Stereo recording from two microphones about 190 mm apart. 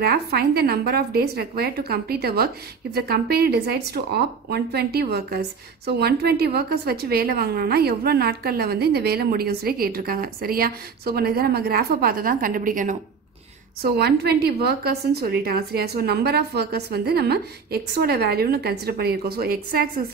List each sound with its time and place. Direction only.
0.0 s a woman's voice: 55° right (ahead or behind)
13.8 s a woman's voice: 55° right (ahead or behind)